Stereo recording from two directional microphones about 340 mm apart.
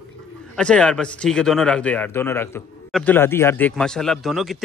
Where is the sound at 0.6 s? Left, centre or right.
Centre.